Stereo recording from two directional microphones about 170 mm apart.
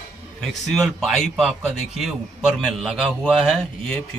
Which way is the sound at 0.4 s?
Centre (ahead or behind).